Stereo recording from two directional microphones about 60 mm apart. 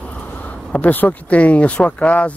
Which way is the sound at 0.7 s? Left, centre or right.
Left.